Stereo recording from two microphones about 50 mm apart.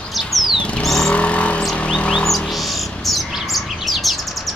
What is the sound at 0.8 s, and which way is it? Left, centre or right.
Vehicle, centre.